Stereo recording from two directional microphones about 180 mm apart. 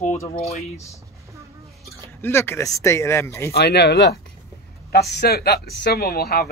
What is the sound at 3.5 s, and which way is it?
Speech, 65° left (ahead or behind).